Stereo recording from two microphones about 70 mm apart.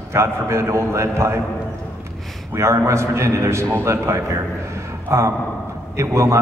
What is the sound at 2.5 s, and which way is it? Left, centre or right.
A man's voice, right.